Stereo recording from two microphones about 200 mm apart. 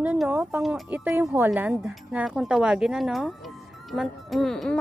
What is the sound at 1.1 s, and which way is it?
Speech, 15° right (ahead or behind).